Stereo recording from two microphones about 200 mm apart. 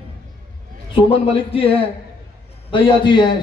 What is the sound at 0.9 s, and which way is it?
A man's voice, 25° left (ahead or behind).